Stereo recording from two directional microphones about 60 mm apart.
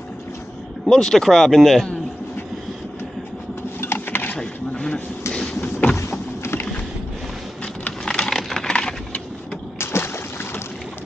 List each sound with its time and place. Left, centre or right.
0.8 s speech: centre
3.8 s sewing machine: left
4.4 s a sound: centre
5.3 s vehicle: centre
5.9 s vehicle: left
7.6 s a sound: centre
9.8 s splash: left